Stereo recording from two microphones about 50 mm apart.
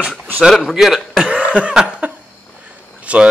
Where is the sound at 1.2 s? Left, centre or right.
Right.